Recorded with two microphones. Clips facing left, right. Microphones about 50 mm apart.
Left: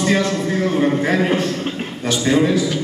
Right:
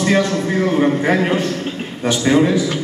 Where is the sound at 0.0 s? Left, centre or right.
Right.